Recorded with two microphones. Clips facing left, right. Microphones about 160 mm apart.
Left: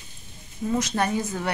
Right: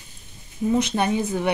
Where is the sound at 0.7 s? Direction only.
20° right (ahead or behind).